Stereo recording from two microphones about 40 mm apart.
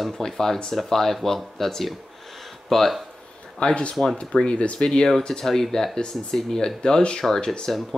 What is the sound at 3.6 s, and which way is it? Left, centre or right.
Speech, left.